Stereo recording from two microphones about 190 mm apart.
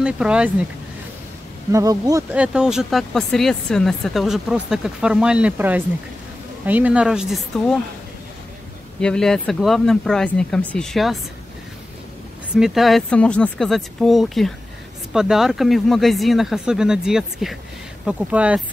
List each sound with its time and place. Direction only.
0.0 s speech: 5° right (ahead or behind)
1.7 s speech: 20° right (ahead or behind)
2.3 s speech: 5° right (ahead or behind)
9.0 s speech: 5° left (ahead or behind)
12.5 s speech: centre (ahead or behind)